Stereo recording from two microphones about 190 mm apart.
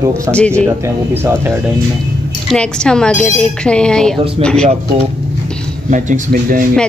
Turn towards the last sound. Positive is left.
turn(degrees=-45)  # may be behind; listen again after turning